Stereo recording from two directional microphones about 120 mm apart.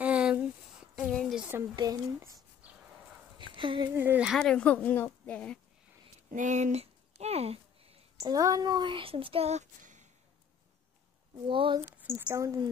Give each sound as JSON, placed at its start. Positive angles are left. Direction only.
{"t": 0.0, "sound": "a sound", "side_deg": -10}
{"t": 1.5, "sound": "speech", "side_deg": -20}
{"t": 2.6, "sound": "a sound", "side_deg": -10}
{"t": 3.5, "sound": "speech", "side_deg": -45}
{"t": 3.9, "sound": "speech", "side_deg": -15}
{"t": 4.3, "sound": "a woman's voice", "side_deg": 5}
{"t": 6.3, "sound": "speech", "side_deg": -85}
{"t": 8.2, "sound": "a child's voice", "side_deg": -30}
{"t": 11.4, "sound": "a child's voice", "side_deg": -45}
{"t": 12.0, "sound": "speech", "side_deg": -20}